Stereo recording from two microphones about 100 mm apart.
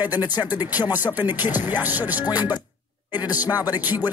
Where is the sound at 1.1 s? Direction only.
20° right (ahead or behind).